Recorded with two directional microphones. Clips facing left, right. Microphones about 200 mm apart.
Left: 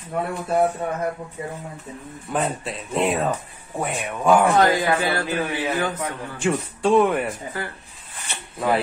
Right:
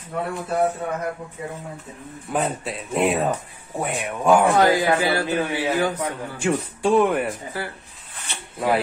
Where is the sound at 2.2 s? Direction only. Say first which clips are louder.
Even; centre (ahead or behind).